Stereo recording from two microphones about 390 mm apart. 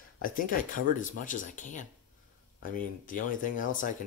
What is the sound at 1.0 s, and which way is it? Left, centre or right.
Speech, centre.